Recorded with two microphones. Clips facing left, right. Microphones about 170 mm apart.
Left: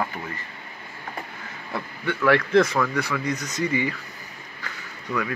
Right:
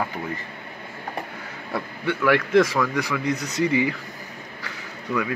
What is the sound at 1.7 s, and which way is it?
Speech, 5° right (ahead or behind).